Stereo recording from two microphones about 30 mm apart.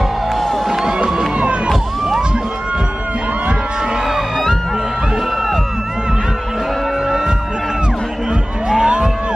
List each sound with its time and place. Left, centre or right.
0.7 s music: right
4.1 s music: centre
8.6 s music: right